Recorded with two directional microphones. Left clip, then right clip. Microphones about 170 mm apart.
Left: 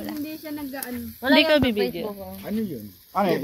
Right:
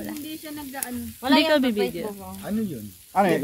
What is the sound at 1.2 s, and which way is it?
Speech, centre (ahead or behind).